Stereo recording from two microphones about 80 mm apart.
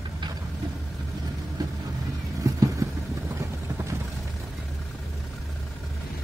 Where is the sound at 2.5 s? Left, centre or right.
Right.